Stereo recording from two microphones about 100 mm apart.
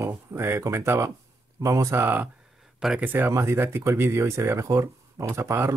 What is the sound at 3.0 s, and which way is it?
Speech, 20° right (ahead or behind).